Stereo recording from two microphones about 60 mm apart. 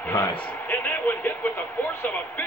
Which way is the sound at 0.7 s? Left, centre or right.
Left.